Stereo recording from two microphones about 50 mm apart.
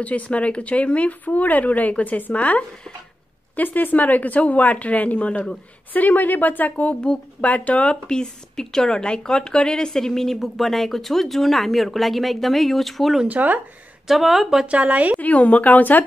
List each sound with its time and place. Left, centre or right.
0.0 s speech: left; by 13.2 s centre
13.3 s speech: right
14.0 s speech: centre
14.7 s speech: right
15.1 s speech: left